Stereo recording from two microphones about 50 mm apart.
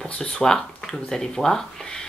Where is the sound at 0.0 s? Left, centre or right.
Centre.